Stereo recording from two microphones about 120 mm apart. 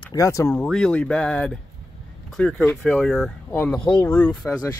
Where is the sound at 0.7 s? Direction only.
5° left (ahead or behind).